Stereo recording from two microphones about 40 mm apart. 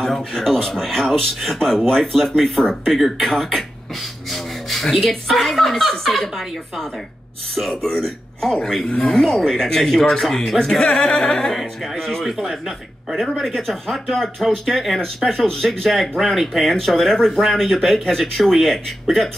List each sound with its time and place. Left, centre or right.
0.0 s speech: centre
7.7 s speech: centre
10.9 s singing: left
11.1 s speech: centre
11.5 s speech: centre
13.2 s speech: centre
15.9 s speech: centre